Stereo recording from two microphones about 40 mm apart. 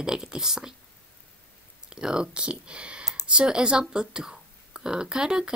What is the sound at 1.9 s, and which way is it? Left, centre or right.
Speech, centre.